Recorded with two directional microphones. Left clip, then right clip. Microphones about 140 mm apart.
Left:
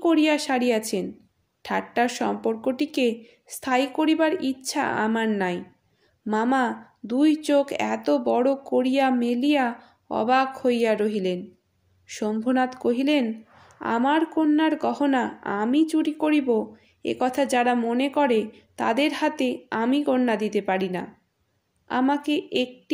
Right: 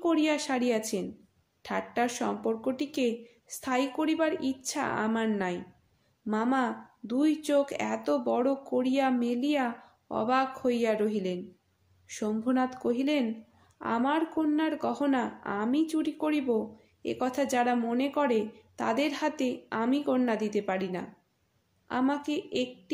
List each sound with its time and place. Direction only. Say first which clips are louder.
0.0 s speech: left 6 dB; 45° left (ahead or behind)